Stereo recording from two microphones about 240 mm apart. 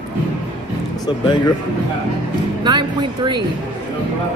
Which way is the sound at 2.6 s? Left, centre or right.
Centre.